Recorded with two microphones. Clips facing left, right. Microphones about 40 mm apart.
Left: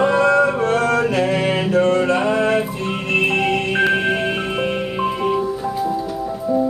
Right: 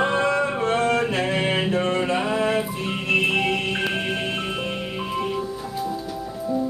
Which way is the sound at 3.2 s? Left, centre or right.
Centre.